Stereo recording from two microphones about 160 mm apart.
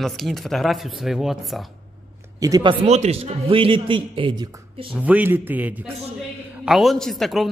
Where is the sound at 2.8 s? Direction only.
45° right (ahead or behind).